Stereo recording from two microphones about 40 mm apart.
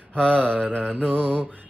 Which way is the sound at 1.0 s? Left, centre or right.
Left.